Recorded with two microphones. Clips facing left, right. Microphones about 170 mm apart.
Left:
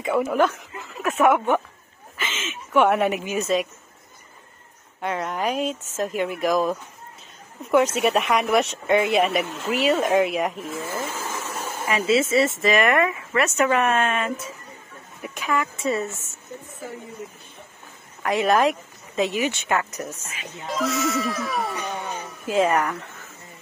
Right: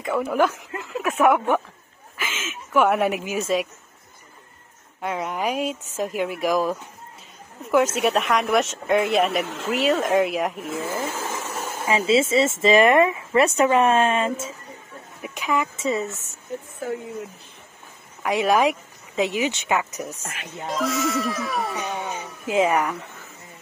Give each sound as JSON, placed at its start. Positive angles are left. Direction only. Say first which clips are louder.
{"t": 0.3, "sound": "speech", "louder": "even", "side_deg": -5}
{"t": 5.0, "sound": "speech", "louder": "even", "side_deg": -5}
{"t": 10.7, "sound": "speech", "louder": "right 2 dB", "side_deg": -20}
{"t": 15.2, "sound": "speech", "louder": "right 1 dB", "side_deg": -15}
{"t": 18.2, "sound": "speech", "louder": "even", "side_deg": -10}
{"t": 20.4, "sound": "speech", "louder": "even", "side_deg": 0}
{"t": 22.5, "sound": "speech", "louder": "even", "side_deg": -10}